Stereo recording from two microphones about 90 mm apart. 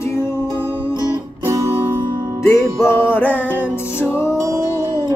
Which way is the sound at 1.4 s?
35° right (ahead or behind).